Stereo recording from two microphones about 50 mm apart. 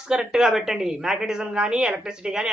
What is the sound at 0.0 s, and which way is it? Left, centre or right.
A man's voice, centre.